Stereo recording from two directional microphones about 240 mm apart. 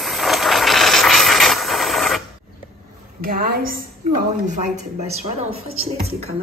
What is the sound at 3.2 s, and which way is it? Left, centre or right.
Speech, right.